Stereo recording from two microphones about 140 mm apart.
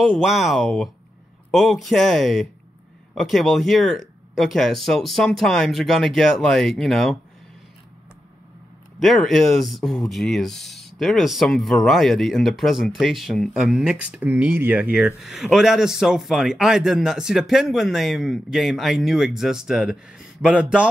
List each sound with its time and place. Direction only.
0.0 s speech: centre (ahead or behind)
9.0 s speech: centre (ahead or behind)